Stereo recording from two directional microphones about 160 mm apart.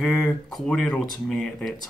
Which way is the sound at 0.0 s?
Centre (ahead or behind).